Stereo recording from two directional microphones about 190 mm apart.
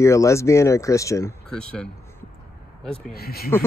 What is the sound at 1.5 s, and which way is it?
Speech, 5° left (ahead or behind).